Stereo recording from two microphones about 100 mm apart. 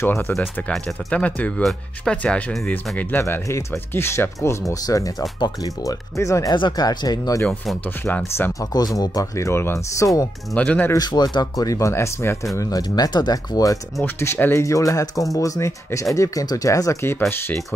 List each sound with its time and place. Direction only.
0.0 s speech: 25° left (ahead or behind)
6.5 s speech: 45° left (ahead or behind)
7.8 s speech: 20° left (ahead or behind)
8.7 s speech: 40° left (ahead or behind)
10.5 s speech: 15° left (ahead or behind)
11.0 s speech: 45° left (ahead or behind); by 12.4 s 25° left (ahead or behind)
12.5 s speech: 40° left (ahead or behind)
14.0 s speech: 25° left (ahead or behind)